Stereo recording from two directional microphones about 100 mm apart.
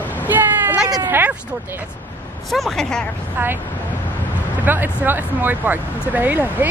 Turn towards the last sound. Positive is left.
turn(degrees=-20)  # may be behind; listen again after turning